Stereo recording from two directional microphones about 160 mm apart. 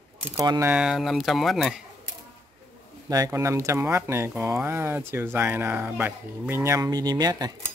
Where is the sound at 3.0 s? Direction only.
20° right (ahead or behind).